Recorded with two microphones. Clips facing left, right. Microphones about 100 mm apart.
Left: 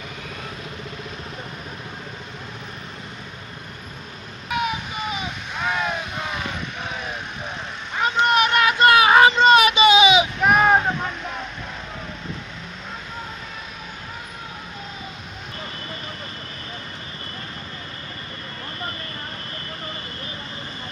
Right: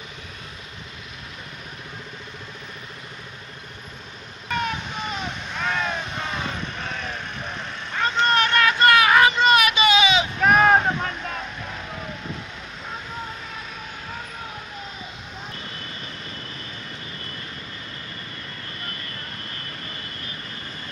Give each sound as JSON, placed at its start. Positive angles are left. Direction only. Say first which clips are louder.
{"t": 4.5, "sound": "vehicle", "louder": "left 2 dB", "side_deg": 10}
{"t": 7.9, "sound": "vehicle", "louder": "left 2 dB", "side_deg": 15}
{"t": 10.5, "sound": "vehicle", "louder": "right 1 dB", "side_deg": 5}